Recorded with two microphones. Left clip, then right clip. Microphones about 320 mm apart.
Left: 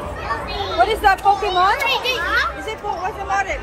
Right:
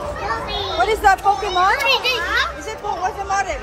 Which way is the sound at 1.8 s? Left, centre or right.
Right.